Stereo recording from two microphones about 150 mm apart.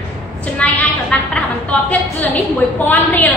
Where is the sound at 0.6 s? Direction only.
10° left (ahead or behind).